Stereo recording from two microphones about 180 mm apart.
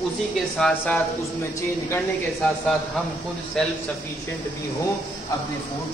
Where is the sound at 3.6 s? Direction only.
5° left (ahead or behind).